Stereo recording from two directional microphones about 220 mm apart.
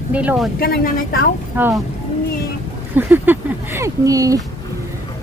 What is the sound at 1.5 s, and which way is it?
Speech, 10° right (ahead or behind).